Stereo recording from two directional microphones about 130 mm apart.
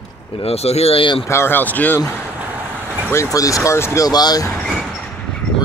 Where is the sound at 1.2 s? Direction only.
20° left (ahead or behind).